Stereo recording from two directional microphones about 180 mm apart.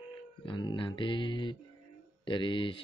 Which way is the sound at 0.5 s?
25° left (ahead or behind).